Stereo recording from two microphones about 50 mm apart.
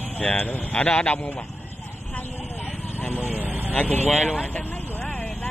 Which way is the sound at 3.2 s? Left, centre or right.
Right.